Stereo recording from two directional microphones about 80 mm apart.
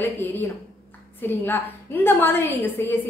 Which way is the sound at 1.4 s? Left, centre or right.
Left.